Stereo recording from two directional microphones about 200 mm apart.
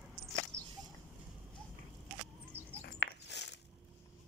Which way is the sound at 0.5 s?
65° right (ahead or behind).